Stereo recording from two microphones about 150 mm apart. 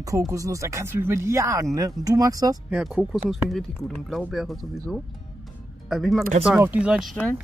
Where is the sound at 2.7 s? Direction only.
Centre (ahead or behind).